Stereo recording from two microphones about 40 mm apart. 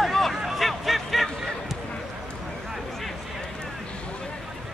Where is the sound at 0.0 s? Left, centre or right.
Centre.